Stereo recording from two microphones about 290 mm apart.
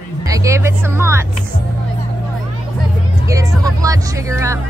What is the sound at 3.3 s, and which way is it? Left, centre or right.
Speech, centre.